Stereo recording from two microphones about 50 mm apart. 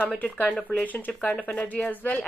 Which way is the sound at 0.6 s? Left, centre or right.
Centre.